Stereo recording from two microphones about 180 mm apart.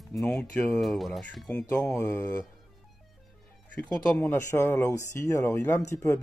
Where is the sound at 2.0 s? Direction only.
15° left (ahead or behind).